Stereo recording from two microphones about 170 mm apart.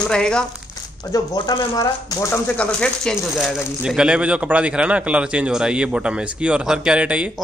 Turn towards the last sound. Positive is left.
turn(degrees=-5)  # may be behind; listen again after turning